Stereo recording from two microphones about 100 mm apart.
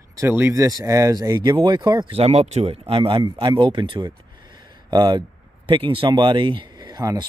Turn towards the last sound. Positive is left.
turn(degrees=-40)  # may be behind; listen again after turning